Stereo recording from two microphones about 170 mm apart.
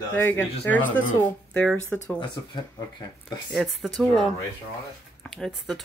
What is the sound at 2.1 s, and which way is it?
Speech, 25° left (ahead or behind).